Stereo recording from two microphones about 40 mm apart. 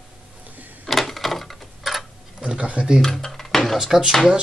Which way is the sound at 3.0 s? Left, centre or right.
Centre.